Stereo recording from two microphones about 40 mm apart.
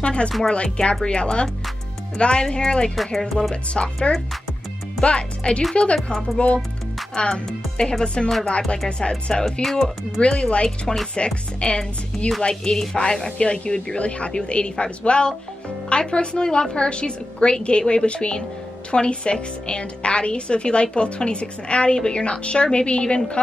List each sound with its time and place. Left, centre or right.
0.0 s a woman's voice: left
9.1 s speech: centre
10.2 s a woman's voice: left